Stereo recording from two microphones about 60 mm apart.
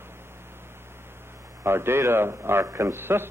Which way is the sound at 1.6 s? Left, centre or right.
Right.